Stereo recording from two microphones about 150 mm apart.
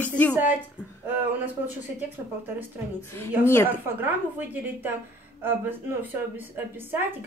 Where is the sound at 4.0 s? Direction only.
15° right (ahead or behind).